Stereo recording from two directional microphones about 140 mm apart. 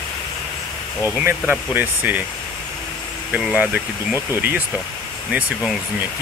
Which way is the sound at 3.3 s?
10° right (ahead or behind).